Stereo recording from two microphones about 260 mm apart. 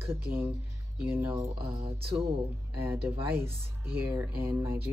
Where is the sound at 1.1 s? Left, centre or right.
Centre.